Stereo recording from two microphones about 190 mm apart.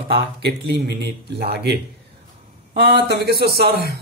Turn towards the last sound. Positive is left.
turn(degrees=-55)  # may be behind; listen again after turning